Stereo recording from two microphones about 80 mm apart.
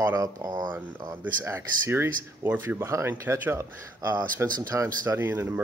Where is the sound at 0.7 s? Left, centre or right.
Right.